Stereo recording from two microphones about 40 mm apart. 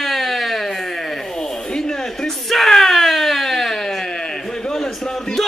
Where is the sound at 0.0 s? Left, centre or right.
Centre.